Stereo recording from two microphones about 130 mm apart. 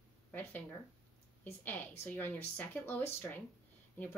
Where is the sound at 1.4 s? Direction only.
15° left (ahead or behind).